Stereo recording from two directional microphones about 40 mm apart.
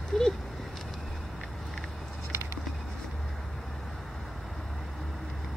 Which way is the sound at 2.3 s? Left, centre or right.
Right.